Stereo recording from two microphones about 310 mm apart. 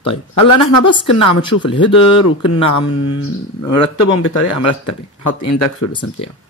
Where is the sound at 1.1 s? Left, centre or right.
Left.